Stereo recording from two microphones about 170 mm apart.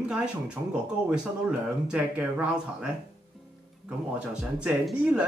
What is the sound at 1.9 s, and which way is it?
Speech, 10° right (ahead or behind).